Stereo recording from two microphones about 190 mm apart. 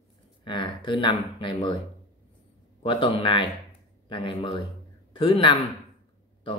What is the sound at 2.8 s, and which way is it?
A man's voice, 25° left (ahead or behind).